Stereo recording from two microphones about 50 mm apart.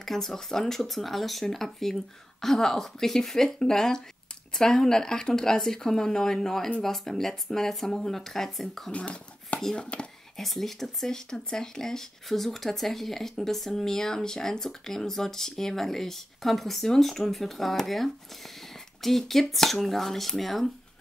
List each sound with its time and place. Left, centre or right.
0.0 s speech: centre
8.9 s speech: left
10.3 s speech: centre